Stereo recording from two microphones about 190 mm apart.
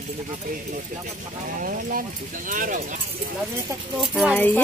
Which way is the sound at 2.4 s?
45° right (ahead or behind).